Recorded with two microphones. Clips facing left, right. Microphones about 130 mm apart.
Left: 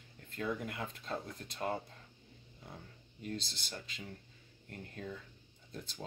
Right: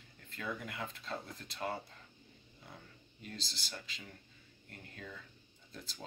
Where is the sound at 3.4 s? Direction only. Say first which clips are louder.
Left 1 dB; 50° left (ahead or behind).